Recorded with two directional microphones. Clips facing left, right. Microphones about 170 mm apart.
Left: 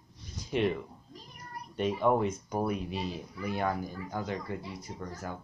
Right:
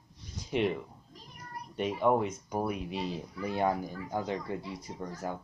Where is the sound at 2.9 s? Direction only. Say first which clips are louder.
Right 1 dB; 20° right (ahead or behind).